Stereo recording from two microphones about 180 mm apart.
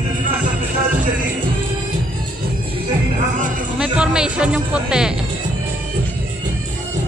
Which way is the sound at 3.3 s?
45° right (ahead or behind).